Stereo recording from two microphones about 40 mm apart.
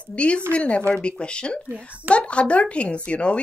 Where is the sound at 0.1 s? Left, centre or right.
Left.